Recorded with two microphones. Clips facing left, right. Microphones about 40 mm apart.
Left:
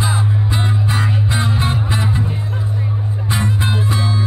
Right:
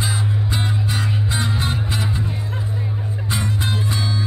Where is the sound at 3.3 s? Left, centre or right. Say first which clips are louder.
Left 4 dB; centre.